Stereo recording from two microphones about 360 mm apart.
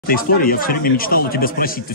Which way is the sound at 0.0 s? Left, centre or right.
Left.